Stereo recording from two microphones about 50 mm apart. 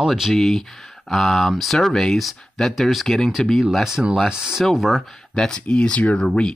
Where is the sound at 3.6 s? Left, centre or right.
Centre.